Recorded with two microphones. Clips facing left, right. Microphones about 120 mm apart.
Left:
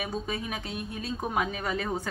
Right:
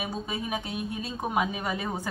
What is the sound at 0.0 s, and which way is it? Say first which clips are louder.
A woman's voice: even; 5° right (ahead or behind).